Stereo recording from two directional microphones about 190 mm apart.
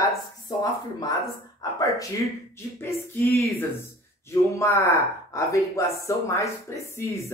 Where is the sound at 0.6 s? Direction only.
20° left (ahead or behind).